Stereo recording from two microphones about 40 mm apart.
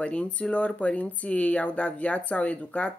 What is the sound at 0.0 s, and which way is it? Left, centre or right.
Speech, left.